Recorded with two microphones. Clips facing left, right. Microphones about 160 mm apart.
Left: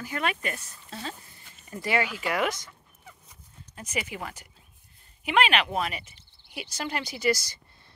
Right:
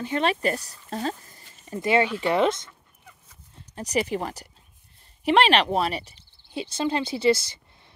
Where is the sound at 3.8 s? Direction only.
35° right (ahead or behind).